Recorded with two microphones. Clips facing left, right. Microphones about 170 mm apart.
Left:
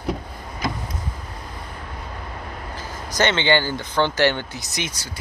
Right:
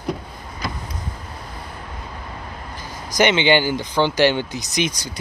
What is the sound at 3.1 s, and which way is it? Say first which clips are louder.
Speech: right 3 dB; 15° right (ahead or behind).